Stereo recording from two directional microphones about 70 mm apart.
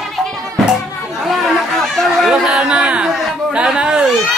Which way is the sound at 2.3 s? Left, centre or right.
Centre.